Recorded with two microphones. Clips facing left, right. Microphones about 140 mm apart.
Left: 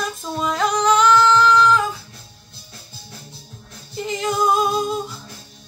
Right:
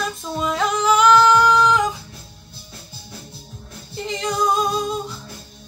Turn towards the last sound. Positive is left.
turn(degrees=0)  # may be behind; listen again after turning